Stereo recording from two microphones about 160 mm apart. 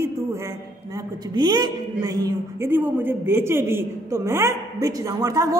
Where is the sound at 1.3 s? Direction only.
25° right (ahead or behind).